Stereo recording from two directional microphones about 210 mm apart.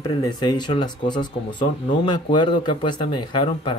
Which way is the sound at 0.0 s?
20° left (ahead or behind).